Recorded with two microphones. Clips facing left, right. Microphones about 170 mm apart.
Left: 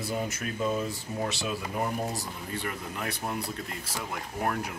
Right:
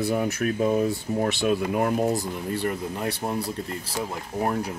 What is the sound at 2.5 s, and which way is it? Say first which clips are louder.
Speech: right 8 dB; 35° right (ahead or behind).